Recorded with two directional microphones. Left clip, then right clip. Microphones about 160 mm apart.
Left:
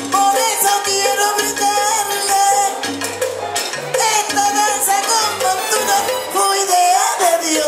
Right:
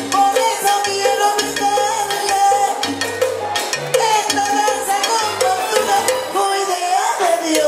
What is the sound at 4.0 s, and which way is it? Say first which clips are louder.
Music: left 2 dB; 45° left (ahead or behind).